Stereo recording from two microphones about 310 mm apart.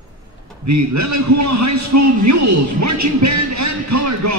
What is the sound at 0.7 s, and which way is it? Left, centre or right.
Speech, right.